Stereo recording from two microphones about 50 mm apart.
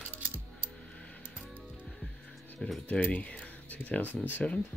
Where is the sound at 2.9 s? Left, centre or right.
Left.